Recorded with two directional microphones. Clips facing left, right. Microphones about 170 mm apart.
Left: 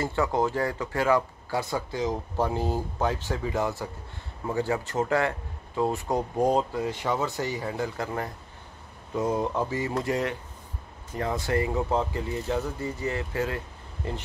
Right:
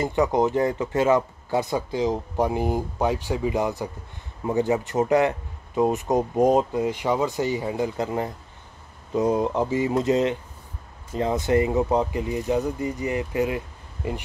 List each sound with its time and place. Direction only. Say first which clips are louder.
0.0 s speech: right 4 dB; 20° right (ahead or behind)